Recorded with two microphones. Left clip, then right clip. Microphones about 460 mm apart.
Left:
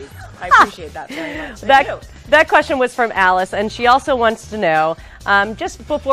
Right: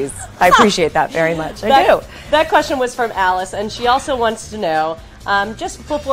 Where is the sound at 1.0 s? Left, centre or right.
Right.